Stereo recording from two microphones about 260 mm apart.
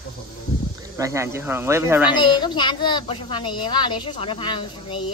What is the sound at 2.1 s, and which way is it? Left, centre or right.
Speech, centre.